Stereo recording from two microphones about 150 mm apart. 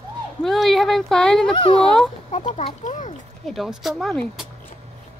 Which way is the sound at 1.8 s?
5° left (ahead or behind).